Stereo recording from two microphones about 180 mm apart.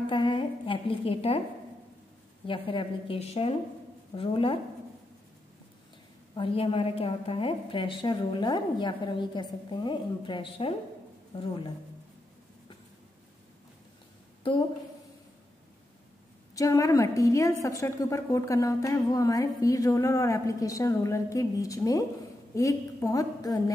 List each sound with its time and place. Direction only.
0.0 s a woman's voice: 30° left (ahead or behind)
2.4 s a woman's voice: 30° left (ahead or behind)
6.3 s a woman's voice: 30° left (ahead or behind)
16.5 s a woman's voice: 20° left (ahead or behind)